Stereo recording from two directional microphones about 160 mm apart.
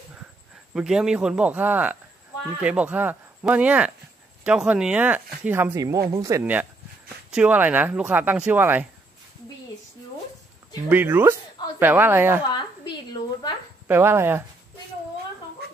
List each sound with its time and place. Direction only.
0.7 s speech: 5° right (ahead or behind)
10.9 s speech: 10° right (ahead or behind)
12.4 s a sound: 30° left (ahead or behind)
13.8 s speech: 15° right (ahead or behind)